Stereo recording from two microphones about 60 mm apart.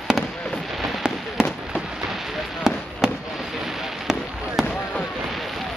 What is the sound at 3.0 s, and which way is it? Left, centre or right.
Fireworks, centre.